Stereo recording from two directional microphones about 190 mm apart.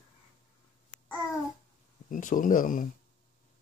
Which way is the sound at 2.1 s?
45° left (ahead or behind).